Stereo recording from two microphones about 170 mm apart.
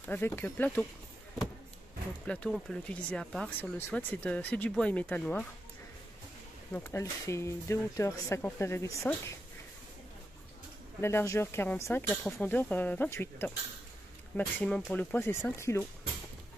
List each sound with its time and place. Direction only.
0.0 s speech: 10° left (ahead or behind)
2.2 s speech: 5° left (ahead or behind)
6.7 s speech: 15° left (ahead or behind)
11.0 s speech: 15° left (ahead or behind)